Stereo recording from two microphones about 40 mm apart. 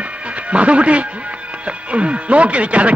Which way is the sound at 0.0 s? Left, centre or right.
Right.